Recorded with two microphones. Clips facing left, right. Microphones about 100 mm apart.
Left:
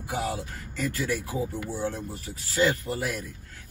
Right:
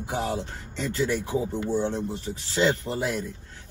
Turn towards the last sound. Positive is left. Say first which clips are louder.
# right 3 dB
turn(degrees=-25)  # may be behind; listen again after turning